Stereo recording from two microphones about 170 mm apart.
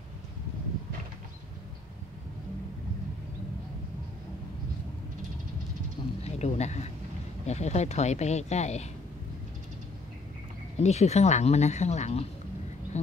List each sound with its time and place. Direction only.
6.2 s speech: 40° left (ahead or behind)
10.8 s speech: 40° left (ahead or behind)